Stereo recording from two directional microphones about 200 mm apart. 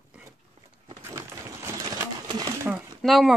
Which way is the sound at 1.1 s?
15° right (ahead or behind).